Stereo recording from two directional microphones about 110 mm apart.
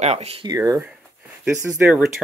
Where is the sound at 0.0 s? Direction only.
75° right (ahead or behind).